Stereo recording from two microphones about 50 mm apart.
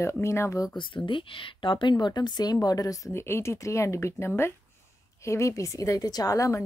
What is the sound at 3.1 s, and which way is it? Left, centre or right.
A woman's voice, left.